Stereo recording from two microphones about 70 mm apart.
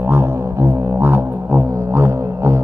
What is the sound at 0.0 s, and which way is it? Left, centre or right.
Music, right.